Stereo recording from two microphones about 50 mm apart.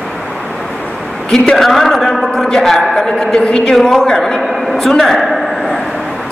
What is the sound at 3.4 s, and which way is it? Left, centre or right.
Speech, left.